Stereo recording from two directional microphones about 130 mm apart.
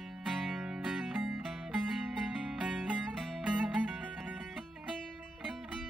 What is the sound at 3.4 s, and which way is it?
Music, 10° right (ahead or behind).